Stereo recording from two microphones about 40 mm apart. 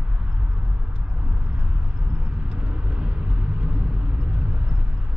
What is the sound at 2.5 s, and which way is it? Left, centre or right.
Vehicle, right.